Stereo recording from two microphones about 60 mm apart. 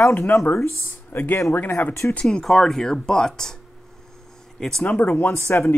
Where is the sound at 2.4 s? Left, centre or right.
Centre.